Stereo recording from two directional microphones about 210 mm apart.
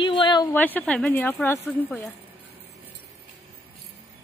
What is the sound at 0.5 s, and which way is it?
A woman's voice, 10° left (ahead or behind).